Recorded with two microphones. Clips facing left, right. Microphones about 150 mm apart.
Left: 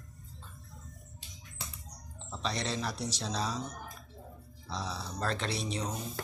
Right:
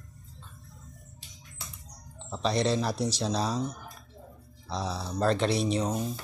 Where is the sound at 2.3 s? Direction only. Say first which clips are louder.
Right 8 dB; 35° right (ahead or behind).